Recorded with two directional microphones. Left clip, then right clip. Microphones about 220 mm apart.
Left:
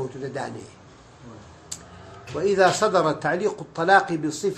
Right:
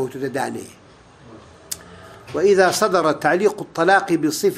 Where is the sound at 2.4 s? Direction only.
35° right (ahead or behind).